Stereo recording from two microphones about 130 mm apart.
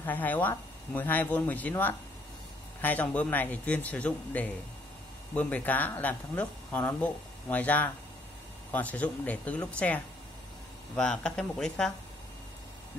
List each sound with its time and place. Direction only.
0.0 s speech: 15° left (ahead or behind)